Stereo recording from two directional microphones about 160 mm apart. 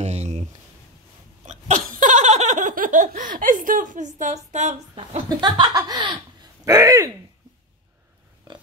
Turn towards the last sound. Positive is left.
turn(degrees=-20)  # may be behind; listen again after turning